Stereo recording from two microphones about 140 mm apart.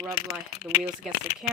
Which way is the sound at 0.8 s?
5° right (ahead or behind).